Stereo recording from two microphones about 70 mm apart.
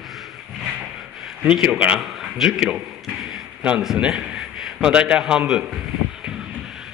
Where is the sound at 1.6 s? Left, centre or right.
Centre.